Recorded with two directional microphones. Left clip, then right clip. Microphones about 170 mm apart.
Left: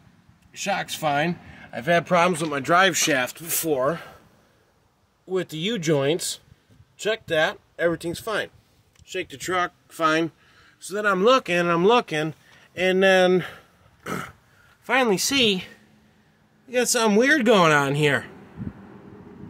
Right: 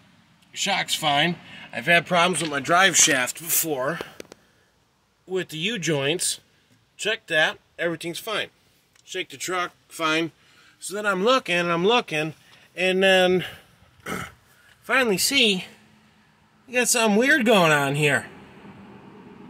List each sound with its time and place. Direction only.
0.5 s speech: centre (ahead or behind)
5.3 s speech: centre (ahead or behind); by 10.0 s 20° left (ahead or behind)
10.8 s speech: 10° left (ahead or behind)
14.9 s speech: centre (ahead or behind)